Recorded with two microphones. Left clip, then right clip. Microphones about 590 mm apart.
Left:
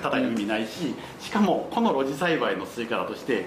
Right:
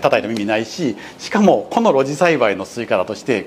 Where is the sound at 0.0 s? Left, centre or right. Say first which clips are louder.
Right 10 dB; right.